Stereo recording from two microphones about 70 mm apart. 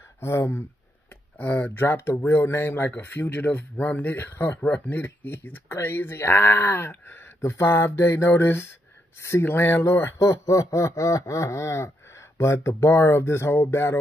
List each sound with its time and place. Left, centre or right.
0.2 s speech: left
1.4 s speech: left